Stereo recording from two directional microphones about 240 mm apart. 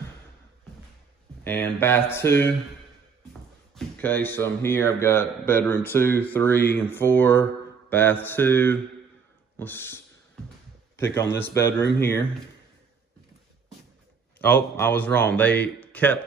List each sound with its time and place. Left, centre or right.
1.4 s speech: centre
3.7 s speech: centre
11.1 s speech: centre
14.4 s speech: centre